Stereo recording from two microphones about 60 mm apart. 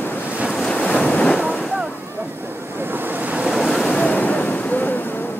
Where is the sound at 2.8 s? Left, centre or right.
Right.